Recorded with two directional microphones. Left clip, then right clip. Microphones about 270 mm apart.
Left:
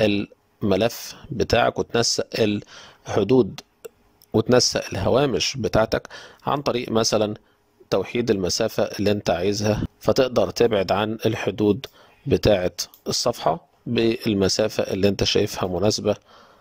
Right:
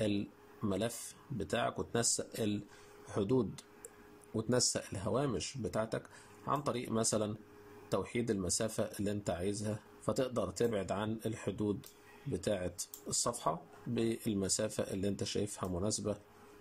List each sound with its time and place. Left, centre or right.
0.0 s speech: left